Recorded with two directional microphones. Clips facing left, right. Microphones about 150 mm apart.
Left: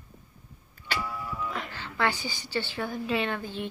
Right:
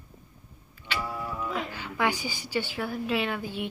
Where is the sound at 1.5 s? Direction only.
10° right (ahead or behind).